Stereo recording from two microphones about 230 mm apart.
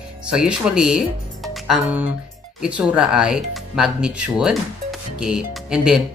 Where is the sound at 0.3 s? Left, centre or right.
Centre.